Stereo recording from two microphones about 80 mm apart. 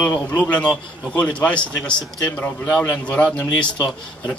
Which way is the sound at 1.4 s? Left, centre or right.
Centre.